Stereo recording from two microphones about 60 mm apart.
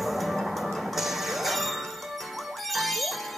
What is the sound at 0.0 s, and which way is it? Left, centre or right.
Music, centre.